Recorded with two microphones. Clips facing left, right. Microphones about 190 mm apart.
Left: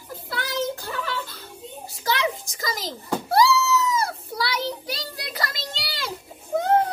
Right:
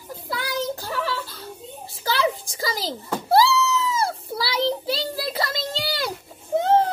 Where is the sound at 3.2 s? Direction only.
30° right (ahead or behind).